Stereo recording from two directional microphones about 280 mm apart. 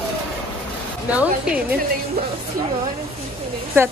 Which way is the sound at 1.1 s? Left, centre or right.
Centre.